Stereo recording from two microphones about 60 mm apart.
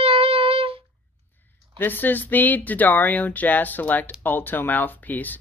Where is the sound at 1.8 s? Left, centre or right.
Left.